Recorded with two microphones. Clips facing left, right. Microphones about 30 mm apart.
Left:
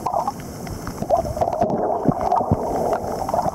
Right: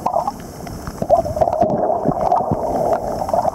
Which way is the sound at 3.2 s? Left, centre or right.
Centre.